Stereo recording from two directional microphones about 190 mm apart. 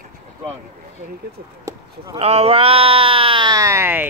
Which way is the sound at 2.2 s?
30° right (ahead or behind).